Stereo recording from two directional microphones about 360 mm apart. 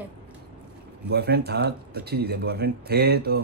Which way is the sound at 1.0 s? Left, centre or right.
Right.